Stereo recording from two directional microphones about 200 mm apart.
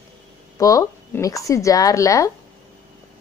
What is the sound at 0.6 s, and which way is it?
A woman's voice, 15° left (ahead or behind).